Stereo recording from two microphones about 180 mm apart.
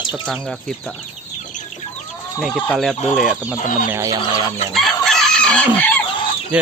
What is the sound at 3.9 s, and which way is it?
Fowl, 20° right (ahead or behind).